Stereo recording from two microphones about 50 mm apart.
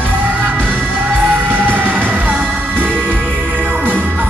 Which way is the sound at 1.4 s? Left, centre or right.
Right.